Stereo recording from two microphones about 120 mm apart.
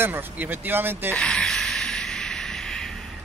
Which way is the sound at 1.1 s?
5° left (ahead or behind).